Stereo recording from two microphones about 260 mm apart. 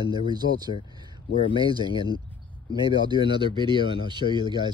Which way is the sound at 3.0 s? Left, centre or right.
Centre.